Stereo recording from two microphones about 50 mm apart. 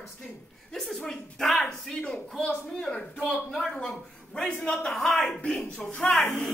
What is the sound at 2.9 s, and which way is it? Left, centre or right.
Speech, left.